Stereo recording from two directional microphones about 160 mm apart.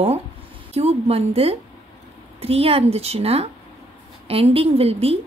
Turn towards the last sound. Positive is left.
turn(degrees=-40)  # may be behind; listen again after turning